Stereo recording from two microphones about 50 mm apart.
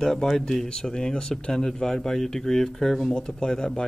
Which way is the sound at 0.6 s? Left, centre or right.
Centre.